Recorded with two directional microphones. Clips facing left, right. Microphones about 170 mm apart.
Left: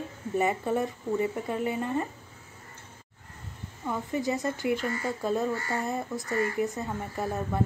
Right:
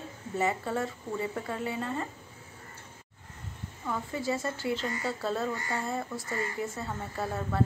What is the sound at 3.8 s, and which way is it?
Speech, 15° left (ahead or behind).